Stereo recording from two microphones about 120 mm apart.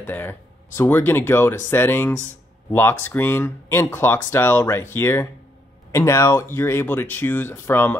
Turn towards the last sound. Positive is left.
turn(degrees=20)  # may be behind; listen again after turning